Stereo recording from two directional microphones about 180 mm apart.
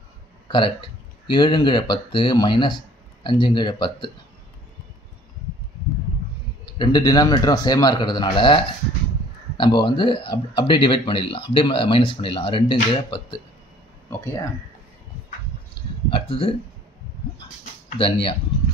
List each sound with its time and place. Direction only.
0.5 s speech: 25° left (ahead or behind)
6.8 s speech: 20° left (ahead or behind)
9.6 s speech: 25° left (ahead or behind)
16.1 s speech: 30° left (ahead or behind)
17.9 s speech: 30° left (ahead or behind)